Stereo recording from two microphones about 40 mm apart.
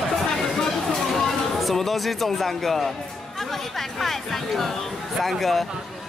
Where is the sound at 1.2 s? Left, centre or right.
Centre.